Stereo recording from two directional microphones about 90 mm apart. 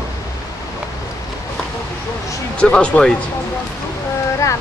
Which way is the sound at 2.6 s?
10° left (ahead or behind).